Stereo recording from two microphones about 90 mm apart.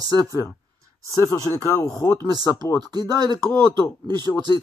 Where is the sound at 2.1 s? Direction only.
50° right (ahead or behind).